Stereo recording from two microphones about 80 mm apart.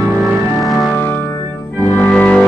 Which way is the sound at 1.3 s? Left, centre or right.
Left.